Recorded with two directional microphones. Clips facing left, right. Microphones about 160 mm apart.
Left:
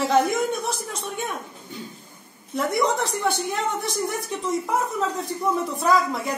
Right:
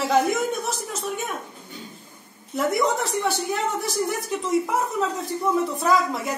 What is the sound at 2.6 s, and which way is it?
A woman's voice, centre (ahead or behind).